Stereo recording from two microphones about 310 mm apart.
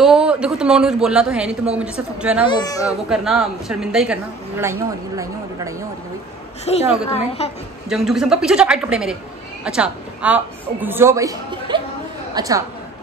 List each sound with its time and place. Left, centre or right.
0.0 s a woman's voice: centre
2.5 s speech: centre
3.1 s a woman's voice: centre
6.7 s a woman's voice: centre
7.9 s a woman's voice: centre